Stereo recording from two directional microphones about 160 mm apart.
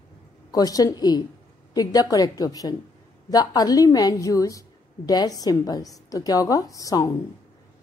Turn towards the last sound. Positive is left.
turn(degrees=20)  # may be behind; listen again after turning